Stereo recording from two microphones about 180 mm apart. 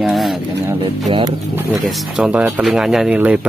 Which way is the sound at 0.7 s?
20° right (ahead or behind).